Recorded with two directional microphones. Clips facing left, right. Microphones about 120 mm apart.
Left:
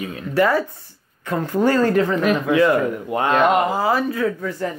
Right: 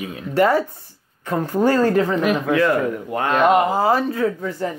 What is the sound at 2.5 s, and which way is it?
Speech, 20° left (ahead or behind).